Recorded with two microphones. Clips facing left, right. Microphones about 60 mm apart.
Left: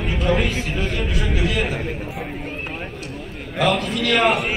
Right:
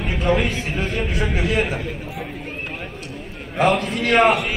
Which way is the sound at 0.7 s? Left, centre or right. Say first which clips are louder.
Right 1 dB; right.